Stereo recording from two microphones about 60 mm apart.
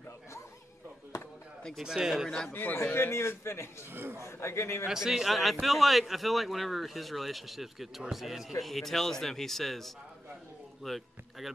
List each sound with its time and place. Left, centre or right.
1.8 s a man's voice: centre
2.2 s speech: centre
2.5 s a man's voice: left
3.9 s a man's voice: right
4.2 s a man's voice: left
4.8 s speech: centre
10.8 s a sound: centre